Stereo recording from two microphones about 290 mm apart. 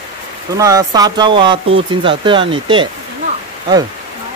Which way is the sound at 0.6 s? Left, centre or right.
Centre.